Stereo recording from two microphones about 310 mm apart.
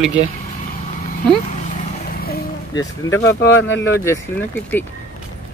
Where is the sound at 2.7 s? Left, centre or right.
Centre.